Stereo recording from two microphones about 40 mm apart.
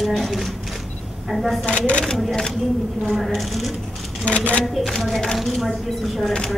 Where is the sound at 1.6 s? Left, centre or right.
Left.